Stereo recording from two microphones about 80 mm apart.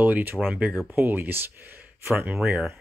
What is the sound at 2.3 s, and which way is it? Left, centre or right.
Speech, centre.